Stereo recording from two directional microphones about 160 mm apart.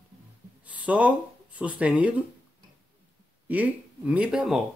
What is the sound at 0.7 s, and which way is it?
Speech, 10° right (ahead or behind).